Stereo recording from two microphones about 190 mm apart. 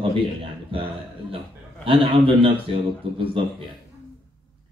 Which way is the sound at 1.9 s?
30° right (ahead or behind).